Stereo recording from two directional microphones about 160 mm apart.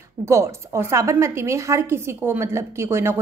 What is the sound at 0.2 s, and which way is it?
A woman's voice, 15° right (ahead or behind).